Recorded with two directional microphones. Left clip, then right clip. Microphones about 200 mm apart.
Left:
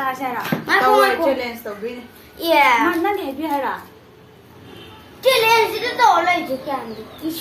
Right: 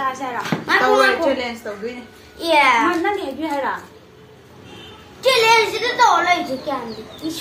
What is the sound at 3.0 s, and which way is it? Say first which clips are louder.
Speech: even; 20° left (ahead or behind).